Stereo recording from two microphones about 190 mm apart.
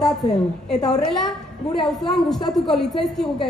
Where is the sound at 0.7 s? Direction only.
20° left (ahead or behind).